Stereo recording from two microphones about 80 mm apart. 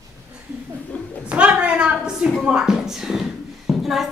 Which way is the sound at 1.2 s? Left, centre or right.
Centre.